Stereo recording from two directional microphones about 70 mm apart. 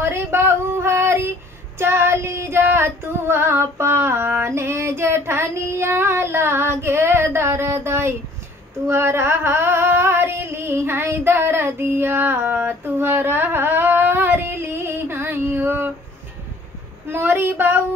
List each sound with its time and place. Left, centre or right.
0.0 s female singing: right
8.8 s a sound: right
17.1 s child singing: right